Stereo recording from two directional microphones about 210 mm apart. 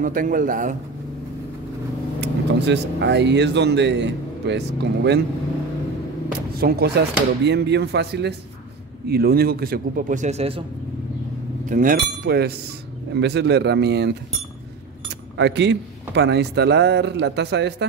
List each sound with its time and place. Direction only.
0.0 s a man's voice: 40° right (ahead or behind)
2.1 s speech: 55° right (ahead or behind)
6.5 s a man's voice: 50° right (ahead or behind); by 10.6 s 30° right (ahead or behind)
11.6 s speech: 40° right (ahead or behind)
12.3 s a man's voice: 50° right (ahead or behind)
15.3 s a man's voice: 55° right (ahead or behind)